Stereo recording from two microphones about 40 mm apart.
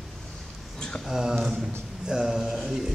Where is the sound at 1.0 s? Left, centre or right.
Centre.